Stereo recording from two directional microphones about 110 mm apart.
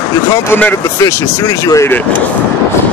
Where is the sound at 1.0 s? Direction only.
30° left (ahead or behind).